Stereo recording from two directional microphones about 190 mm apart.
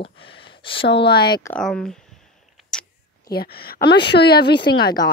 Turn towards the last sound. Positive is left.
turn(degrees=60)  # may be behind; listen again after turning